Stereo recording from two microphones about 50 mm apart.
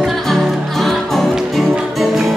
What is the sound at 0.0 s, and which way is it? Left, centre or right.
Music, centre.